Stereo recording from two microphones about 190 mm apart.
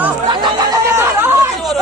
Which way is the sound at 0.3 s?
20° right (ahead or behind).